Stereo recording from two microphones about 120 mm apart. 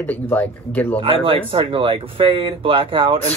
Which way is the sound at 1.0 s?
50° right (ahead or behind).